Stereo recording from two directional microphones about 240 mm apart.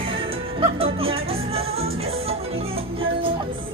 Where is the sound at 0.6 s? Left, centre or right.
Right.